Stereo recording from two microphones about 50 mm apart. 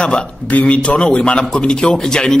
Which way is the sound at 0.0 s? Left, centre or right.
Left.